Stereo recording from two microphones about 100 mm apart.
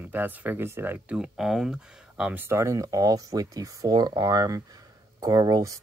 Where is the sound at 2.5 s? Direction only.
30° right (ahead or behind).